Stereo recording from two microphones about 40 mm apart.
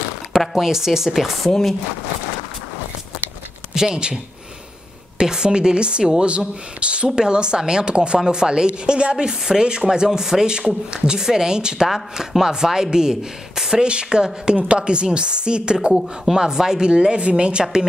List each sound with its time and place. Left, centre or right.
0.4 s speech: centre
3.7 s speech: centre
11.9 s speech: centre; by 17.8 s right